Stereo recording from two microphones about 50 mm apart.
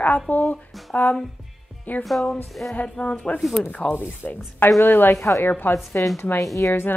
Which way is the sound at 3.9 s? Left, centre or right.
Left.